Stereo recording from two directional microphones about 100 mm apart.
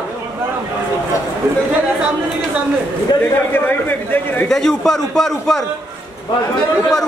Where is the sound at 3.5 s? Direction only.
20° left (ahead or behind).